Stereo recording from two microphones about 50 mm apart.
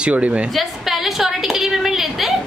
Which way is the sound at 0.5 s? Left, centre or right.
Centre.